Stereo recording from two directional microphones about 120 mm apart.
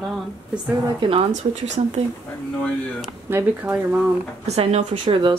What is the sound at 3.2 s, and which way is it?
Speech, 20° right (ahead or behind).